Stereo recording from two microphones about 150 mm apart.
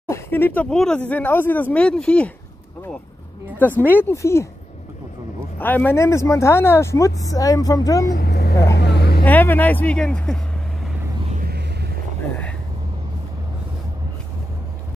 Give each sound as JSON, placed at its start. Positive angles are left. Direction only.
{"t": 0.1, "sound": "speech", "side_deg": 15}
{"t": 3.5, "sound": "speech", "side_deg": 10}
{"t": 5.6, "sound": "speech", "side_deg": 15}
{"t": 8.1, "sound": "vehicle", "side_deg": 90}
{"t": 9.2, "sound": "speech", "side_deg": 10}
{"t": 11.3, "sound": "vehicle", "side_deg": -85}